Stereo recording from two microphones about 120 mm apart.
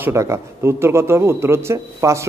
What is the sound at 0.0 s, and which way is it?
A man's voice, 25° right (ahead or behind).